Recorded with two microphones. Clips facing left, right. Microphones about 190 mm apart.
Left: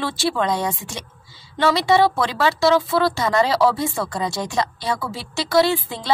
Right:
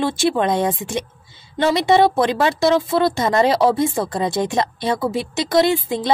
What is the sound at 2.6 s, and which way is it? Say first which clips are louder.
A woman's voice: even; 20° right (ahead or behind).